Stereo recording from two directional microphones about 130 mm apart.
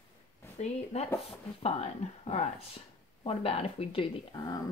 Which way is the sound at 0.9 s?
55° left (ahead or behind).